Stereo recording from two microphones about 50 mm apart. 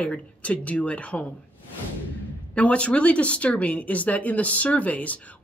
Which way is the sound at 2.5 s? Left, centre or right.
Left.